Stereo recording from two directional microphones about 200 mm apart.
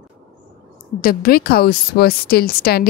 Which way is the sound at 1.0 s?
50° left (ahead or behind).